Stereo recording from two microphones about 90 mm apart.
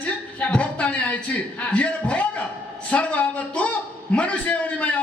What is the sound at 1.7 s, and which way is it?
A man's voice, 15° left (ahead or behind).